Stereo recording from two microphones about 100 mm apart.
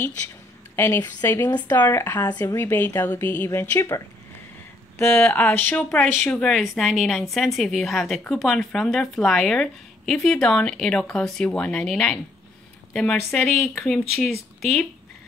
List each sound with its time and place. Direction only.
0.7 s a woman's voice: 25° left (ahead or behind)
2.4 s a woman's voice: 25° left (ahead or behind)
5.2 s speech: 15° left (ahead or behind)